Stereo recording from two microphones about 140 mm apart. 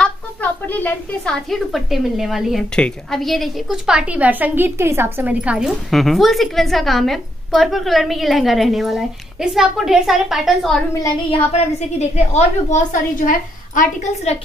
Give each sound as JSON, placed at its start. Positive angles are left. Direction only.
{"t": 0.0, "sound": "a woman's voice", "side_deg": 10}
{"t": 11.2, "sound": "a woman's voice", "side_deg": 50}